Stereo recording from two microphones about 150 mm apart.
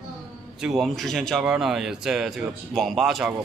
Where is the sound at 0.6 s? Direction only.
Centre (ahead or behind).